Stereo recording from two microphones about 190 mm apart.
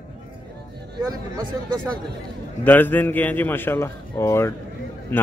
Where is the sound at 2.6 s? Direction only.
10° left (ahead or behind).